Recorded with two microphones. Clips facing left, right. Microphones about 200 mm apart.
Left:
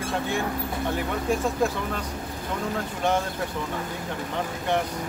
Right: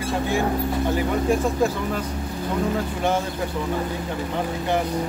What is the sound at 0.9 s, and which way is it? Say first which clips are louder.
Speech: right 4 dB; centre (ahead or behind).